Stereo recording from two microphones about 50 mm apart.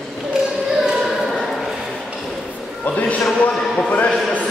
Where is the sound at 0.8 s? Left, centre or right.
Centre.